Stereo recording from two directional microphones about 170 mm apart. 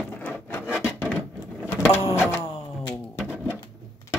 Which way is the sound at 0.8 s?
15° left (ahead or behind).